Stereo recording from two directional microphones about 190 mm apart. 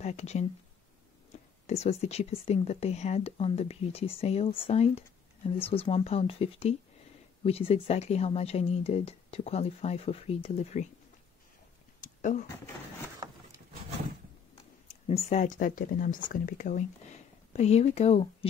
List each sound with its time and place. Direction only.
0.0 s speech: 35° left (ahead or behind)
1.7 s speech: 35° left (ahead or behind)
12.0 s a sound: 40° left (ahead or behind)
14.5 s speech: 35° left (ahead or behind)